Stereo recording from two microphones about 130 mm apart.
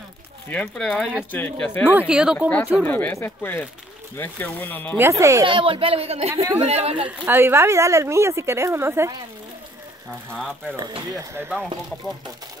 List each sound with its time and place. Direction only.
0.5 s speech: 10° left (ahead or behind)
0.8 s speech: centre (ahead or behind)
1.3 s speech: 15° left (ahead or behind)
1.9 s speech: 10° right (ahead or behind)
2.8 s speech: 15° left (ahead or behind)
4.9 s a woman's voice: 20° right (ahead or behind)
5.4 s speech: 40° right (ahead or behind)
6.3 s a woman's voice: 25° right (ahead or behind)
6.6 s speech: 55° right (ahead or behind)
7.2 s a woman's voice: 20° right (ahead or behind)
10.3 s speech: 5° left (ahead or behind)
11.1 s speech: 15° right (ahead or behind)